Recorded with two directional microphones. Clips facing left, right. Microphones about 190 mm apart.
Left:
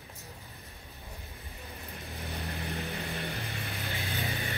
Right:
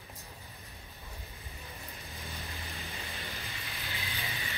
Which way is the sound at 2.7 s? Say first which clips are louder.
Left 8 dB; 55° left (ahead or behind).